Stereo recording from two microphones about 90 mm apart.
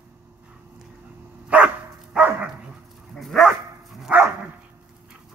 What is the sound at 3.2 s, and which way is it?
Dog, centre (ahead or behind).